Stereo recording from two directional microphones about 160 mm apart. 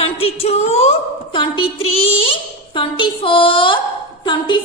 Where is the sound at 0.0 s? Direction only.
40° left (ahead or behind).